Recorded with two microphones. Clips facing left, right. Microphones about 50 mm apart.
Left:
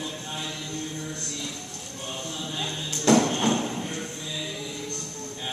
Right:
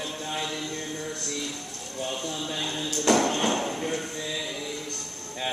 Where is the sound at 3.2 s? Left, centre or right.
Centre.